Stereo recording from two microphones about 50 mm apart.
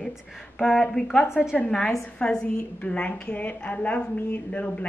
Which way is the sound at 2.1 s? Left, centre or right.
Centre.